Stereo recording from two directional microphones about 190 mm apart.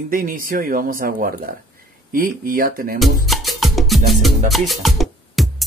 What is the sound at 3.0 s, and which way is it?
Music, centre (ahead or behind).